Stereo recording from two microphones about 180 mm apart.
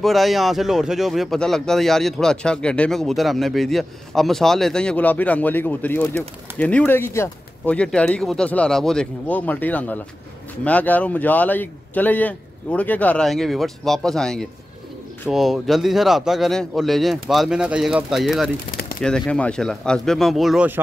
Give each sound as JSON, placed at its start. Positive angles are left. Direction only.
{"t": 0.0, "sound": "speech", "side_deg": 0}
{"t": 18.7, "sound": "a sound", "side_deg": 55}
{"t": 18.9, "sound": "speech", "side_deg": 5}